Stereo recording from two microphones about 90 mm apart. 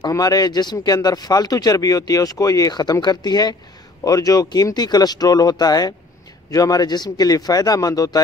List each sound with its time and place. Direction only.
0.1 s speech: 45° left (ahead or behind)